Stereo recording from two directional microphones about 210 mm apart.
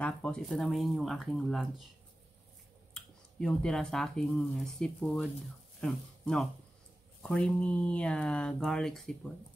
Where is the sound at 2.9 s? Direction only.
5° left (ahead or behind).